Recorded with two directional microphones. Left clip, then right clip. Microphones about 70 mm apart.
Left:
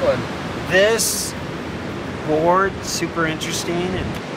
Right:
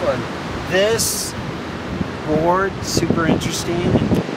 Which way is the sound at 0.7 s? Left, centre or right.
Centre.